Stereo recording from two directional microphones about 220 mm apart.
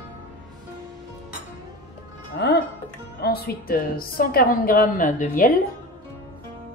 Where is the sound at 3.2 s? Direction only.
45° left (ahead or behind).